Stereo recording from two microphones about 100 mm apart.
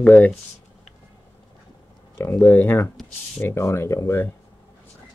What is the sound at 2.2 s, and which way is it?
Speech, 20° left (ahead or behind).